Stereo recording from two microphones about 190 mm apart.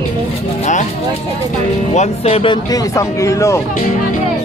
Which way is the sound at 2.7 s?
15° left (ahead or behind).